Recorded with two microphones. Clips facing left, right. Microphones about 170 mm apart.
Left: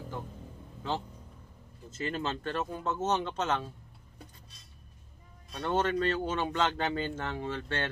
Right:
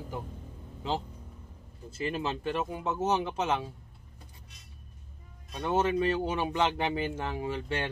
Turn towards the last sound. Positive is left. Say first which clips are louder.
# right 2 dB
turn(degrees=-10)  # may be behind; listen again after turning